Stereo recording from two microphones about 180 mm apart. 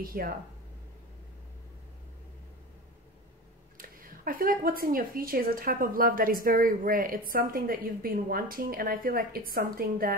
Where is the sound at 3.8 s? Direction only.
50° right (ahead or behind).